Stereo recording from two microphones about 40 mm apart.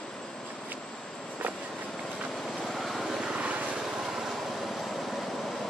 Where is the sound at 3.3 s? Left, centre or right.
Right.